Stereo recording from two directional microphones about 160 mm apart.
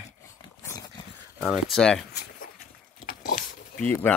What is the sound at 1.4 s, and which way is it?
Speech, centre (ahead or behind).